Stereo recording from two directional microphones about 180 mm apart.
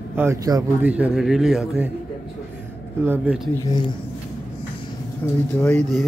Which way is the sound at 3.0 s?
10° right (ahead or behind).